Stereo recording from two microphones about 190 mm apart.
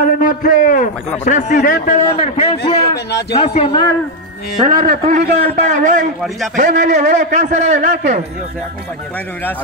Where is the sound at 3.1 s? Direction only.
60° left (ahead or behind).